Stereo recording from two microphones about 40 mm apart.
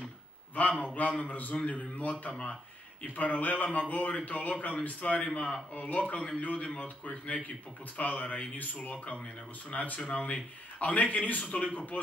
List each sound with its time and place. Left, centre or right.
0.6 s speech: left